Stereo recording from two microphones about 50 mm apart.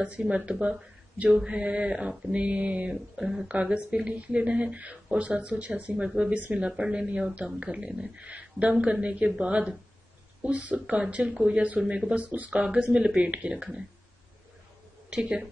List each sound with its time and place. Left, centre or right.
0.0 s speech: right
3.2 s speech: centre
3.7 s speech: right
6.0 s speech: centre
15.0 s speech: centre